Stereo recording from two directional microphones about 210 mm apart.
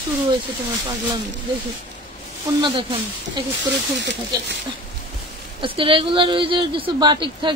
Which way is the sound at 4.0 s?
55° right (ahead or behind).